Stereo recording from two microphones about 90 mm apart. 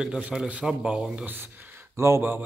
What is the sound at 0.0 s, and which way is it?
A man's voice, 10° right (ahead or behind).